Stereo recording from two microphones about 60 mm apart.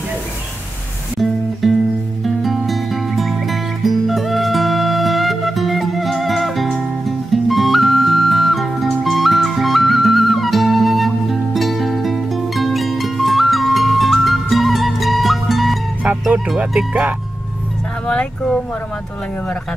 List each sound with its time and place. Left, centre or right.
1.2 s music: centre
16.0 s music: right
18.0 s speech: centre